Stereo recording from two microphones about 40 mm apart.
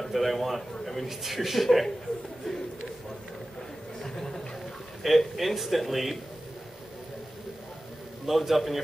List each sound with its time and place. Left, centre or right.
0.1 s a man's voice: centre
4.0 s a sound: centre
5.0 s a man's voice: centre
8.3 s a man's voice: centre